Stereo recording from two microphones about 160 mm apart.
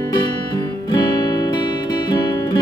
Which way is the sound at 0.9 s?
25° left (ahead or behind).